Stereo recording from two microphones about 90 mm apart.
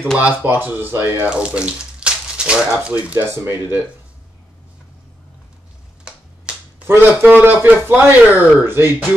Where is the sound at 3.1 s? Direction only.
25° right (ahead or behind).